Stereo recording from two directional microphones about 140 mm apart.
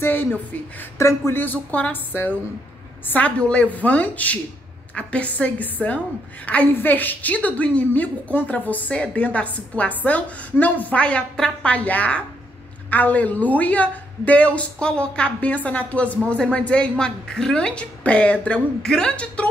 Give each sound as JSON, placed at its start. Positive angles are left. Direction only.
{"t": 0.0, "sound": "a woman's voice", "side_deg": 15}